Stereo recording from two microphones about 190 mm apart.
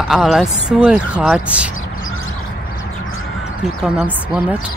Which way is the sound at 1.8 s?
90° left.